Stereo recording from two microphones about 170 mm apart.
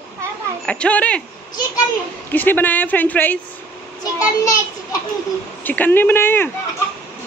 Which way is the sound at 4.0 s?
20° left (ahead or behind).